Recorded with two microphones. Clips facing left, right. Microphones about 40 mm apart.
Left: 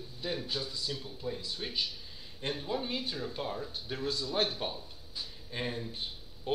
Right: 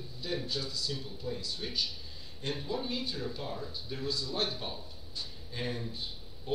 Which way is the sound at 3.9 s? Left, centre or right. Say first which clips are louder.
Left 3 dB; left.